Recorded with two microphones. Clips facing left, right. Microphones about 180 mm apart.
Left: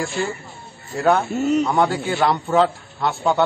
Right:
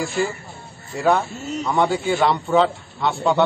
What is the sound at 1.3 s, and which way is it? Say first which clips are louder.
Speech: left 10 dB; 65° left (ahead or behind).